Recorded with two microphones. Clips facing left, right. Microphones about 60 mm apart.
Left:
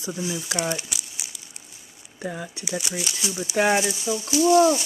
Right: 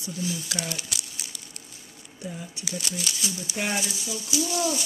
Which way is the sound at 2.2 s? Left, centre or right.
Left.